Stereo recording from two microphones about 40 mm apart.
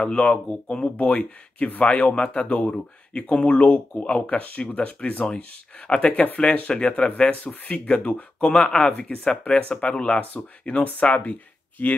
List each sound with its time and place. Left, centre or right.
0.0 s speech: left
0.8 s speech: left
2.4 s speech: left
3.9 s speech: left
4.4 s speech: left
10.8 s speech: left
11.8 s speech: left